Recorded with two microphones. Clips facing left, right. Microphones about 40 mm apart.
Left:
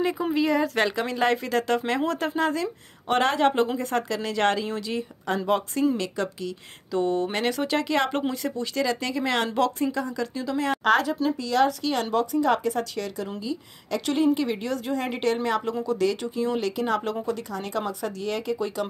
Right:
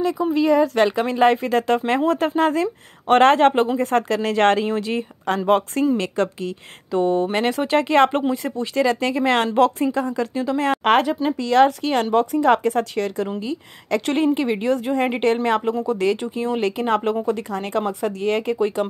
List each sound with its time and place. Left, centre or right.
0.3 s speech: centre
0.8 s speech: right
2.0 s a woman's voice: right
6.9 s a woman's voice: right
8.3 s a woman's voice: right